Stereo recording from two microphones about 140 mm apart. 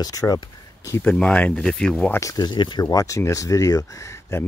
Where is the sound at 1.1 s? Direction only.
5° left (ahead or behind).